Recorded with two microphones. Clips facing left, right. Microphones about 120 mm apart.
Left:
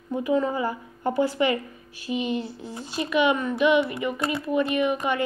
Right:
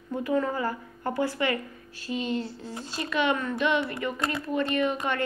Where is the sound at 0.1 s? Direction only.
15° left (ahead or behind).